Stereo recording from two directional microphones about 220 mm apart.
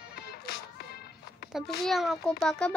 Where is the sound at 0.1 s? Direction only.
45° left (ahead or behind).